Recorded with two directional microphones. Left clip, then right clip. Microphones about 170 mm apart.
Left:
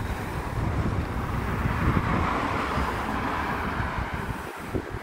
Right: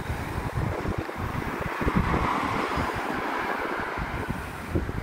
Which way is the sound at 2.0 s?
55° right (ahead or behind).